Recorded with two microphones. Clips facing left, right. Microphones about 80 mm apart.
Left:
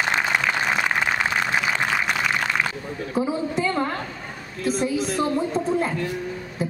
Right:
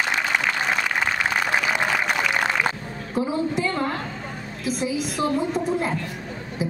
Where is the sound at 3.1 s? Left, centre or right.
Centre.